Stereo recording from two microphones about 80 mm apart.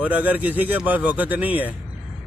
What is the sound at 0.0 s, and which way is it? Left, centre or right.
Speech, right.